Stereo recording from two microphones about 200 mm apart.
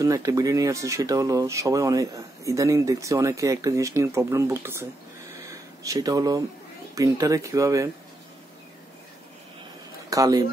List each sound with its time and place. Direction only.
0.0 s speech: 15° right (ahead or behind)
5.5 s a sound: 15° right (ahead or behind)
7.0 s speech: 15° right (ahead or behind)
10.0 s speech: 15° right (ahead or behind)